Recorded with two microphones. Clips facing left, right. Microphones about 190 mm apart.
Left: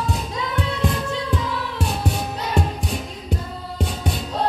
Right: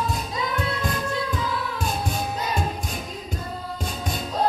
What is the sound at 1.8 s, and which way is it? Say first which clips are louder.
Music: left 5 dB; 70° left (ahead or behind).